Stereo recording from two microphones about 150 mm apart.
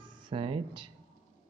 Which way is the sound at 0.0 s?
35° right (ahead or behind).